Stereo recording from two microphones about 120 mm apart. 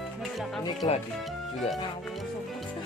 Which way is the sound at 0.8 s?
40° left (ahead or behind).